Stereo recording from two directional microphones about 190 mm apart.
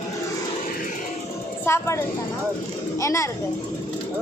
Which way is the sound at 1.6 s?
15° left (ahead or behind).